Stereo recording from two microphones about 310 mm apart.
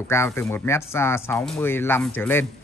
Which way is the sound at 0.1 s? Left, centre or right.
Centre.